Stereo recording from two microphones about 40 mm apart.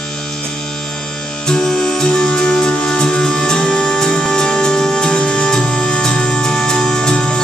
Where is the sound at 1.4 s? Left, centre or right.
Centre.